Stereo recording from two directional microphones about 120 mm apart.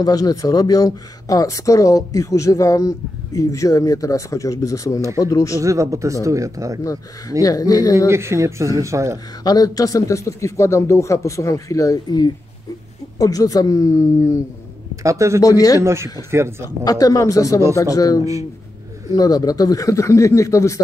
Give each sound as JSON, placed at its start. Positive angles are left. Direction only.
{"t": 0.0, "sound": "speech", "side_deg": 30}
{"t": 5.6, "sound": "speech", "side_deg": -25}
{"t": 6.8, "sound": "speech", "side_deg": 30}
{"t": 8.1, "sound": "speech", "side_deg": -20}
{"t": 9.4, "sound": "speech", "side_deg": 30}
{"t": 15.0, "sound": "speech", "side_deg": -25}
{"t": 15.4, "sound": "speech", "side_deg": 30}
{"t": 15.8, "sound": "speech", "side_deg": -20}
{"t": 16.8, "sound": "speech", "side_deg": 30}